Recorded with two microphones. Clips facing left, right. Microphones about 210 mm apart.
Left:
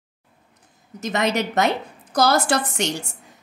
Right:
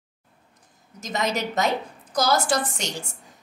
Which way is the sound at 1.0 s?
65° left (ahead or behind).